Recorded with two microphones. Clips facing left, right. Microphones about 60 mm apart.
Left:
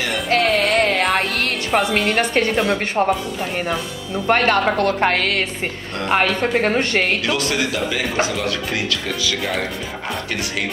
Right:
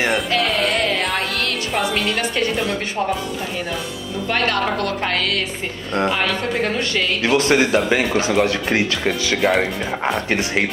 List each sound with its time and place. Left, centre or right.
0.3 s music: left
2.0 s a woman's voice: left
4.3 s a woman's voice: left
6.0 s speech: left
6.6 s a woman's voice: left
7.2 s speech: right